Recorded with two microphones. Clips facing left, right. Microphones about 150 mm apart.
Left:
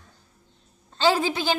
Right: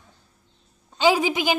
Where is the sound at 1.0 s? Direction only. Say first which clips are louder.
Right 2 dB; 10° right (ahead or behind).